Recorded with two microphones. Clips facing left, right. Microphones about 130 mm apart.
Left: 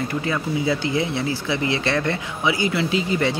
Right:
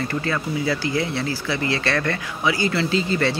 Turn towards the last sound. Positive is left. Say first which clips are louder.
# even
turn(degrees=15)  # may be behind; listen again after turning